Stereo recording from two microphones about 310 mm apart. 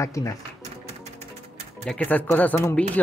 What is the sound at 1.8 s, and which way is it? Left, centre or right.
Speech, centre.